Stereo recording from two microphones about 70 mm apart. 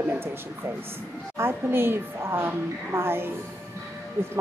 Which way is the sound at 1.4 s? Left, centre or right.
Right.